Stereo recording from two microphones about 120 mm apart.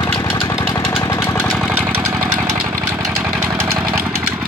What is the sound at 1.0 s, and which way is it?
Jackhammer, 25° left (ahead or behind).